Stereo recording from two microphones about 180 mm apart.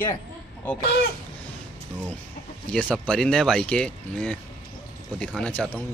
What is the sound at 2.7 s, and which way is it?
Speech, 5° left (ahead or behind).